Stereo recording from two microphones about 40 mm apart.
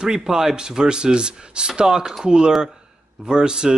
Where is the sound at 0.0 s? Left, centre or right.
Centre.